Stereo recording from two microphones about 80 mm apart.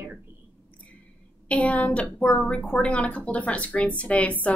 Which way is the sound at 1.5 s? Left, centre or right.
Centre.